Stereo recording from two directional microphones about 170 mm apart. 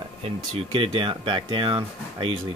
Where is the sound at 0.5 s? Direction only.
35° right (ahead or behind).